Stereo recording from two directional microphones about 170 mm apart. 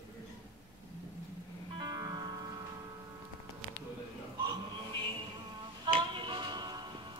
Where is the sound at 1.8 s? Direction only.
20° right (ahead or behind).